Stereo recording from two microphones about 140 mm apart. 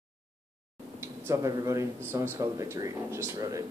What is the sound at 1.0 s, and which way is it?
Speech, 20° right (ahead or behind).